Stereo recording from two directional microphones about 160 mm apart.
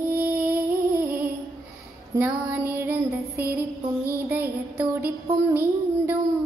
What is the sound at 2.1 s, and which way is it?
Music, 15° right (ahead or behind).